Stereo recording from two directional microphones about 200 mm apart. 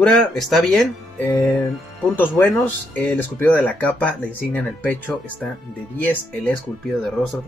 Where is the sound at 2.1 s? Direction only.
10° left (ahead or behind).